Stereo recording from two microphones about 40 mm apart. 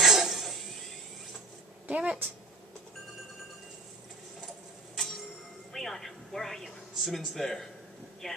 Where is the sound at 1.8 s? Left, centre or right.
Right.